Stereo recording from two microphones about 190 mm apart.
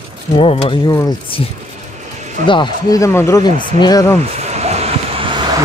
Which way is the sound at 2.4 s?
25° left (ahead or behind).